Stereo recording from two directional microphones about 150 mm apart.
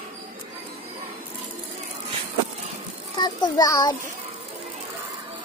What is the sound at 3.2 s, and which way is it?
Speech, 25° left (ahead or behind).